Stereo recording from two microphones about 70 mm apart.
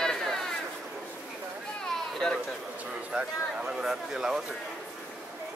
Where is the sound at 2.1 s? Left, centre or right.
Centre.